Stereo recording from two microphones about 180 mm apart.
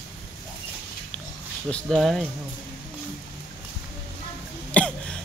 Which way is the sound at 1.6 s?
5° left (ahead or behind).